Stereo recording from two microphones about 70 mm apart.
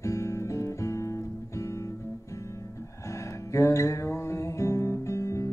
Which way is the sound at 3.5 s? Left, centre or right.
Left.